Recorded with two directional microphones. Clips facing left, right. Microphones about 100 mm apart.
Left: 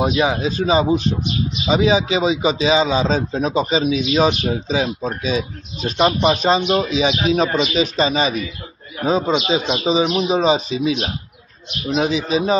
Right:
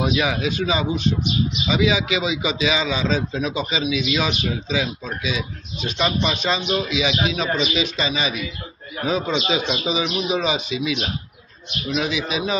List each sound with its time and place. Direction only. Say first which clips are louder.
0.0 s a man's voice: left 3 dB; 30° left (ahead or behind)